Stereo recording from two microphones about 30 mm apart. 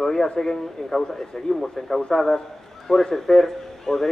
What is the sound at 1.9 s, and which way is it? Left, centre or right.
A man's voice, left.